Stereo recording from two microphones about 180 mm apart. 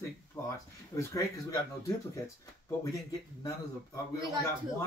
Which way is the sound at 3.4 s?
20° left (ahead or behind).